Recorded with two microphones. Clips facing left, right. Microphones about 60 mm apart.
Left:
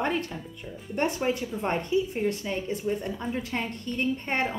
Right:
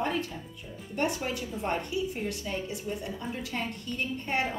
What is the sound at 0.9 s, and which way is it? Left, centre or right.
A woman's voice, left.